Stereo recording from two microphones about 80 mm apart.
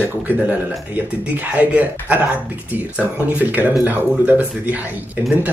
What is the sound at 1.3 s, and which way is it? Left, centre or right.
Speech, centre.